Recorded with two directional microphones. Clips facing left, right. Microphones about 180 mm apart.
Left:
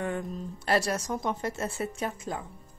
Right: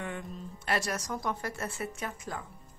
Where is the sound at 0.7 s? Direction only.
35° left (ahead or behind).